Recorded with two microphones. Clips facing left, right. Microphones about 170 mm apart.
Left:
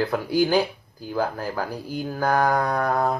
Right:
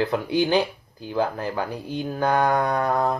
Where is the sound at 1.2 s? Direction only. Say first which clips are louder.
Right 1 dB; 5° left (ahead or behind).